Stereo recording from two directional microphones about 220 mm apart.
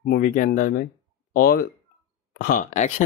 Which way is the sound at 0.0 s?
40° left (ahead or behind).